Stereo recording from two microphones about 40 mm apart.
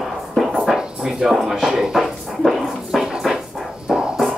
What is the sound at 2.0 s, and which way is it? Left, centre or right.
Dog, centre.